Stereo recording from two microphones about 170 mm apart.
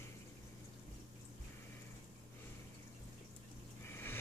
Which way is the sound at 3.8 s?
15° left (ahead or behind).